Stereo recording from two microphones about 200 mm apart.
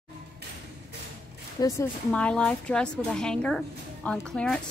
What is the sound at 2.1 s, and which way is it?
Speech, 5° left (ahead or behind).